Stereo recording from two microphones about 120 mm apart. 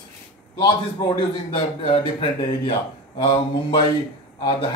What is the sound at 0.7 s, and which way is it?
A man's voice, 40° left (ahead or behind).